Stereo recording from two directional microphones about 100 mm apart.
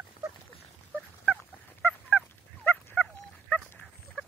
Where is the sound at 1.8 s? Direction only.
15° left (ahead or behind).